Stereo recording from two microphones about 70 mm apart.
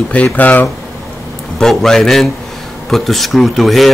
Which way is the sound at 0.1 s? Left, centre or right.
Left.